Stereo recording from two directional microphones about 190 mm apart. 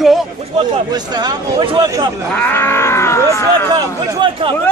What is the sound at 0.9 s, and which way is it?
Speech, 20° right (ahead or behind).